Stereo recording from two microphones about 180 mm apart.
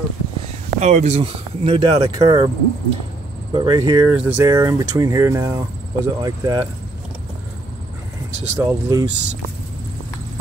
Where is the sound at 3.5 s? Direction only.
25° right (ahead or behind).